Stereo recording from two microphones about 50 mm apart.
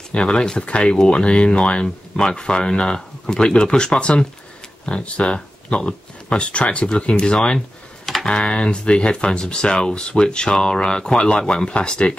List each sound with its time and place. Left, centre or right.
0.1 s speech: centre
8.3 s speech: left